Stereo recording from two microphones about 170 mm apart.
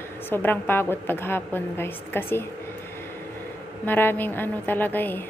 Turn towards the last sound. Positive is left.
turn(degrees=10)  # may be behind; listen again after turning